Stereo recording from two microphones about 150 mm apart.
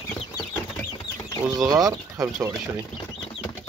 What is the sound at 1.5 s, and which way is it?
Speech, 25° right (ahead or behind).